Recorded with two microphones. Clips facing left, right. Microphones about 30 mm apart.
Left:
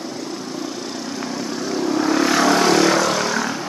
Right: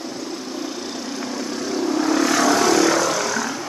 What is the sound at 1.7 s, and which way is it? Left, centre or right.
Vehicle, centre.